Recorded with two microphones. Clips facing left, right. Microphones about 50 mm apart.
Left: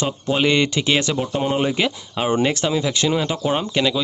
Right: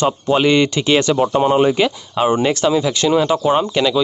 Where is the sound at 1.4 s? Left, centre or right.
Centre.